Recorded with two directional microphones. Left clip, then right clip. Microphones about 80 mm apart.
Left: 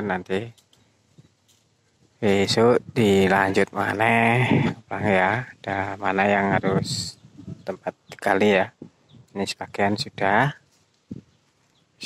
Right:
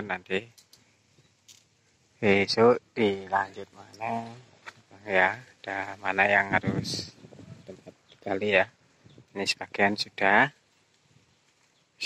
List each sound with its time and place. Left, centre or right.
0.0 s speech: left
2.1 s speech: left